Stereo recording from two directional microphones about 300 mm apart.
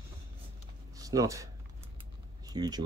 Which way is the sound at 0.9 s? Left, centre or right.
Centre.